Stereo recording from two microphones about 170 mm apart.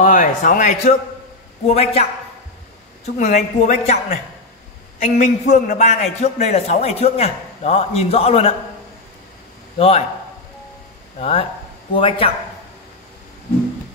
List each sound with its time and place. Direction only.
0.0 s a man's voice: 50° left (ahead or behind)
3.2 s a man's voice: 45° left (ahead or behind)
9.8 s a man's voice: 35° left (ahead or behind)
11.1 s a man's voice: 35° left (ahead or behind)